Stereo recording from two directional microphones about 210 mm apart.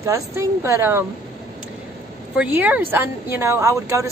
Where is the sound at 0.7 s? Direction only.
10° right (ahead or behind).